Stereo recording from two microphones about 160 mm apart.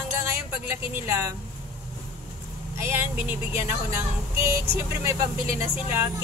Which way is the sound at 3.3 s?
15° right (ahead or behind).